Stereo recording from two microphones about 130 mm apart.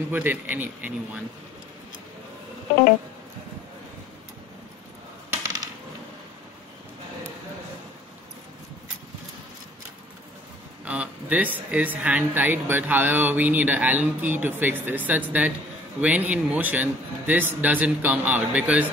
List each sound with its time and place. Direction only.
0.1 s speech: 15° right (ahead or behind)
10.9 s speech: 10° right (ahead or behind)